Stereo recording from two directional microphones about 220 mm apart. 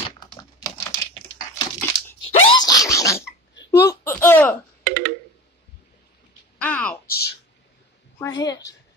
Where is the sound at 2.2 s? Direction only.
20° left (ahead or behind).